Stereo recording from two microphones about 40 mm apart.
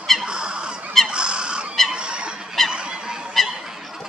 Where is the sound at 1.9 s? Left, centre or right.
Right.